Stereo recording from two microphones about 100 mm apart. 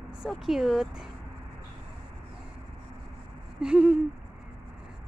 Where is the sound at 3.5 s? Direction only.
10° right (ahead or behind).